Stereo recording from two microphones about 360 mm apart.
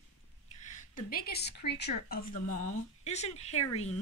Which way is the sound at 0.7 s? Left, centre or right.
Left.